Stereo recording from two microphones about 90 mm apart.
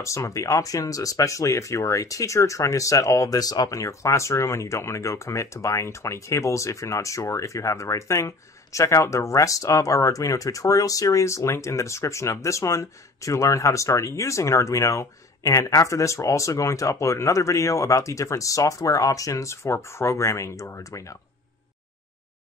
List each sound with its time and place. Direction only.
0.0 s speech: 35° left (ahead or behind)